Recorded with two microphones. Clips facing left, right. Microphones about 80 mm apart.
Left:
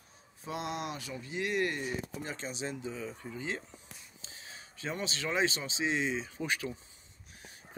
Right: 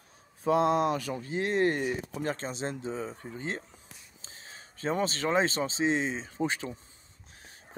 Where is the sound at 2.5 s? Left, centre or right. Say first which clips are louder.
Right 4 dB; right.